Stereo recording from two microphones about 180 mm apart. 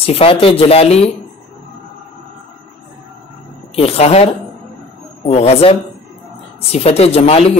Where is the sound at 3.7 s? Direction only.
35° left (ahead or behind).